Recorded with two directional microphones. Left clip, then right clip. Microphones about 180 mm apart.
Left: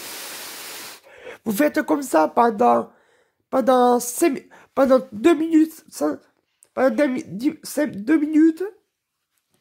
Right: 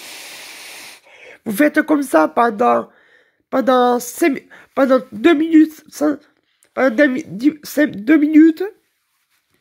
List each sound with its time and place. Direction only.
0.4 s spray: 25° left (ahead or behind)
0.8 s a sound: 25° left (ahead or behind)
1.4 s speech: centre (ahead or behind)